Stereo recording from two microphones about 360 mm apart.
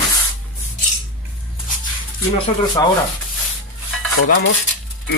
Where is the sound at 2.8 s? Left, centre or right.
Centre.